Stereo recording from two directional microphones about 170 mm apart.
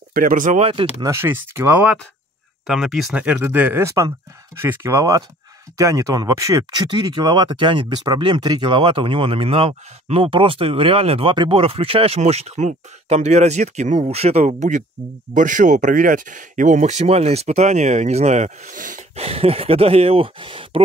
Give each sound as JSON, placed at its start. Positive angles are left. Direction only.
{"t": 0.1, "sound": "speech", "side_deg": -55}
{"t": 0.6, "sound": "speech", "side_deg": -35}
{"t": 1.0, "sound": "speech", "side_deg": -15}